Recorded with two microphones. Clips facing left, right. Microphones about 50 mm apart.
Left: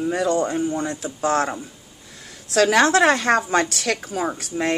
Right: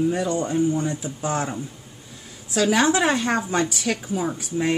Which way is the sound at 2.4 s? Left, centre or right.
Left.